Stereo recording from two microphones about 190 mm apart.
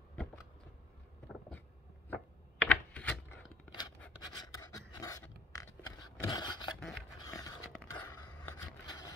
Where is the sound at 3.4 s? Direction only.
20° left (ahead or behind).